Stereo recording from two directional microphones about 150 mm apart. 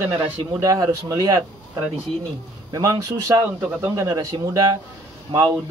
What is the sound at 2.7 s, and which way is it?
A man's voice, 25° right (ahead or behind).